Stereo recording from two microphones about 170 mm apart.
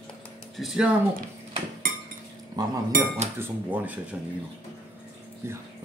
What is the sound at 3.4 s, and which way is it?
Speech, 10° right (ahead or behind).